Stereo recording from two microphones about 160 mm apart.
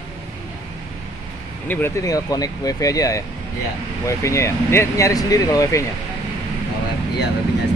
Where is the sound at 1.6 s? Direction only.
15° left (ahead or behind).